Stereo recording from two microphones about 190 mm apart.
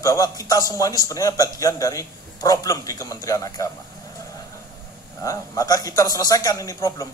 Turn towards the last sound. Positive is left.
turn(degrees=20)  # may be behind; listen again after turning